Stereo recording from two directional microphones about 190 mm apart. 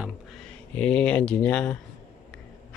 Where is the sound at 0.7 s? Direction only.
5° left (ahead or behind).